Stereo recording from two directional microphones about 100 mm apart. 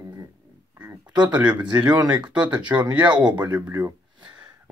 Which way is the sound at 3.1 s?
45° right (ahead or behind).